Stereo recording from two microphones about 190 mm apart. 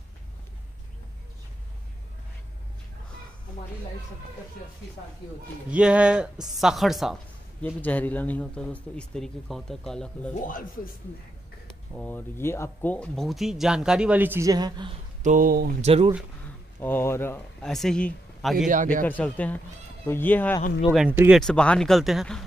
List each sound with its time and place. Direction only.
5.7 s speech: 5° right (ahead or behind)
10.4 s speech: 45° left (ahead or behind)
11.9 s speech: 10° left (ahead or behind); by 14.9 s 20° right (ahead or behind)
15.2 s speech: 45° right (ahead or behind)
15.8 s speech: 35° right (ahead or behind)
16.8 s speech: 10° left (ahead or behind)
21.1 s speech: 10° right (ahead or behind)
21.4 s speech: 5° left (ahead or behind)